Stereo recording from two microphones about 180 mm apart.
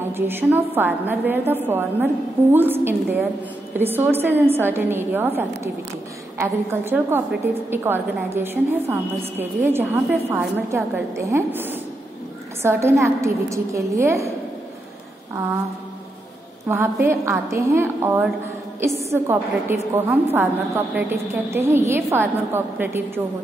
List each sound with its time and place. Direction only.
0.1 s a woman's voice: 10° right (ahead or behind)
16.6 s a woman's voice: 15° right (ahead or behind)